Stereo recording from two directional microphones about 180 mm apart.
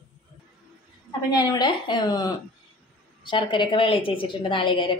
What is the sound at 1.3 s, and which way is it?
A woman's voice, 20° left (ahead or behind).